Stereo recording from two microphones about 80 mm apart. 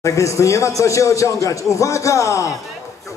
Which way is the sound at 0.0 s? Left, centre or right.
Left.